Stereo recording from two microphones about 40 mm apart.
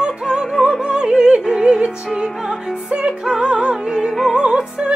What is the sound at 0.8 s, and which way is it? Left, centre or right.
Opera, centre.